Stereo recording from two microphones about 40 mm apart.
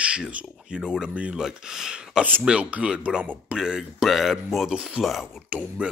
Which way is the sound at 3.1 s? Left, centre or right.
Centre.